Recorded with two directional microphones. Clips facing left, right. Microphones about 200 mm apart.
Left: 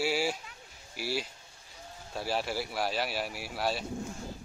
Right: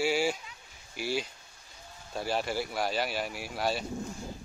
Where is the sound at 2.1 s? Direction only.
Centre (ahead or behind).